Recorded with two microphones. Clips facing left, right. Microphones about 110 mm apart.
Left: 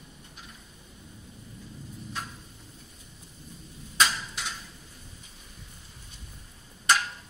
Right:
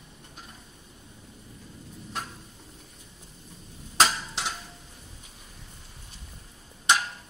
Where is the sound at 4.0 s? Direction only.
85° right.